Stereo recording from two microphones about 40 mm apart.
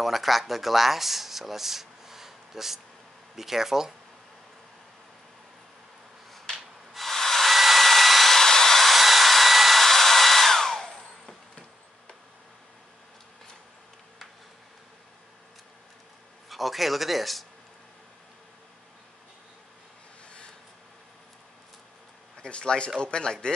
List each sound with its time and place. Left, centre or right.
0.0 s speech: centre
6.5 s hair dryer: centre
16.4 s speech: centre
22.4 s speech: left